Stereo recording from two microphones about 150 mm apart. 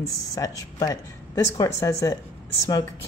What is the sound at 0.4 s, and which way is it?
Speech, 20° left (ahead or behind).